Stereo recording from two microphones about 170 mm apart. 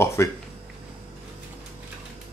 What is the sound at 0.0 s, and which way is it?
Speech, 15° left (ahead or behind).